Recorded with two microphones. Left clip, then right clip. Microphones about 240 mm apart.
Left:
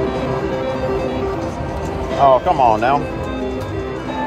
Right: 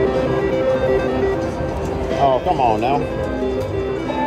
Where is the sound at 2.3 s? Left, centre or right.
Left.